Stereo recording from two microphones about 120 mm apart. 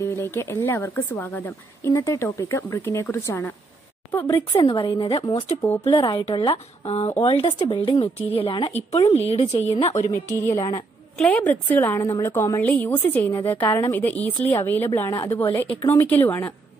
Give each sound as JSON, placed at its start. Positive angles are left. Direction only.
{"t": 0.0, "sound": "speech", "side_deg": 20}
{"t": 4.6, "sound": "speech", "side_deg": 45}
{"t": 8.6, "sound": "a woman's voice", "side_deg": 60}
{"t": 10.0, "sound": "a woman's voice", "side_deg": 25}